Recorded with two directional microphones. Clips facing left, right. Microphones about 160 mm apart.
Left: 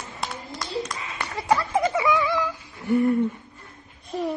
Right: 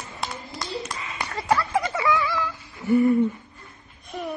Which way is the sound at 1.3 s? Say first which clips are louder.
Even; 15° left (ahead or behind).